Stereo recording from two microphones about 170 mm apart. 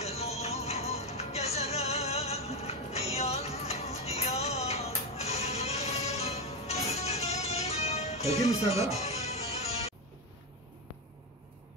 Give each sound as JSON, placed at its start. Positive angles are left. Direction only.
{"t": 0.0, "sound": "music", "side_deg": 40}